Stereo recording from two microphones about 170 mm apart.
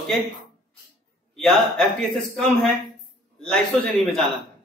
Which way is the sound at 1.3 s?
Centre (ahead or behind).